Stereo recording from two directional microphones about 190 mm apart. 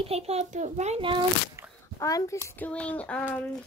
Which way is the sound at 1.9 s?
20° left (ahead or behind).